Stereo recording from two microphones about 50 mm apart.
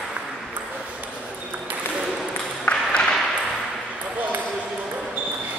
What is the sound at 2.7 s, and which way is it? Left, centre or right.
Ping, centre.